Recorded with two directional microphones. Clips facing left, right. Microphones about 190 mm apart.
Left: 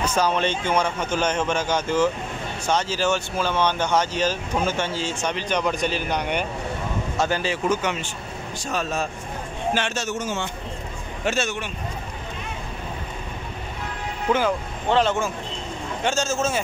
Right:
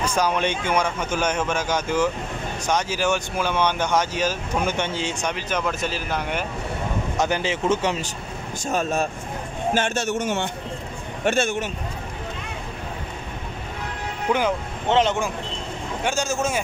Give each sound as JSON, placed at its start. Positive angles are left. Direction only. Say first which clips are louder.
{"t": 0.0, "sound": "speech", "louder": "even", "side_deg": -10}
{"t": 7.2, "sound": "speech", "louder": "even", "side_deg": -20}
{"t": 9.8, "sound": "a man's voice", "louder": "right 3 dB", "side_deg": -50}
{"t": 14.3, "sound": "speech", "louder": "left 1 dB", "side_deg": -20}